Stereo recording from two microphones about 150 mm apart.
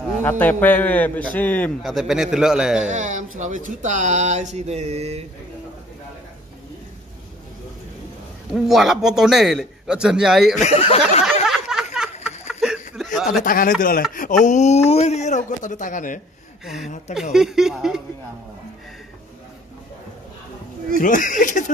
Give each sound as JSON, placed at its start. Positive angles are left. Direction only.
{"t": 0.2, "sound": "a man's voice", "side_deg": 15}
{"t": 1.8, "sound": "a man's voice", "side_deg": 0}
{"t": 2.9, "sound": "speech", "side_deg": -55}
{"t": 8.5, "sound": "a man's voice", "side_deg": 0}
{"t": 10.6, "sound": "speech", "side_deg": 45}
{"t": 11.4, "sound": "a sound", "side_deg": -5}
{"t": 12.4, "sound": "chuckle", "side_deg": -5}
{"t": 13.4, "sound": "speech", "side_deg": 65}
{"t": 14.1, "sound": "speech", "side_deg": 60}
{"t": 16.6, "sound": "a man's voice", "side_deg": 0}
{"t": 21.0, "sound": "speech", "side_deg": 60}